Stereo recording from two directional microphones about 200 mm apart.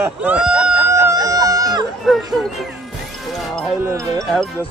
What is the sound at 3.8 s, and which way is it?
Music, 15° right (ahead or behind).